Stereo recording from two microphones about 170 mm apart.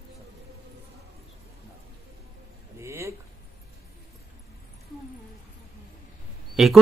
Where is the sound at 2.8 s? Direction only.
15° right (ahead or behind).